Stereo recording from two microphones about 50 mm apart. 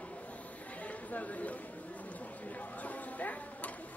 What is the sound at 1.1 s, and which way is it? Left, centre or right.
Chatter, left.